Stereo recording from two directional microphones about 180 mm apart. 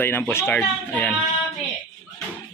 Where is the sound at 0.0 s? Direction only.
10° left (ahead or behind).